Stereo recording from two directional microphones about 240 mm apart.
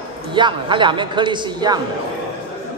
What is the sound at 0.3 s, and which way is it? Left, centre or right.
A man's voice, centre.